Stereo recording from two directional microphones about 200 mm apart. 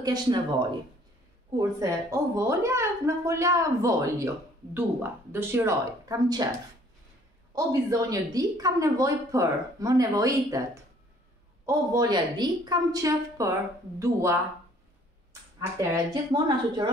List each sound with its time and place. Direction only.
0.0 s speech: 20° right (ahead or behind)
1.6 s a woman's voice: 15° right (ahead or behind)
7.5 s a woman's voice: 15° right (ahead or behind)
15.6 s speech: 15° right (ahead or behind)